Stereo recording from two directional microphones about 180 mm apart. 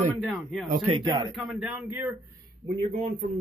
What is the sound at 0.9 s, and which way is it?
Speech, 25° right (ahead or behind).